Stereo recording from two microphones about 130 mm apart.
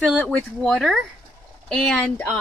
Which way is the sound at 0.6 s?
5° left (ahead or behind).